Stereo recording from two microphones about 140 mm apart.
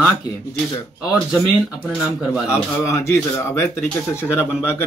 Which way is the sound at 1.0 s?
5° right (ahead or behind).